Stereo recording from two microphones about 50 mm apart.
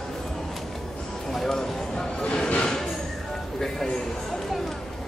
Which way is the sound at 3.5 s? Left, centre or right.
Centre.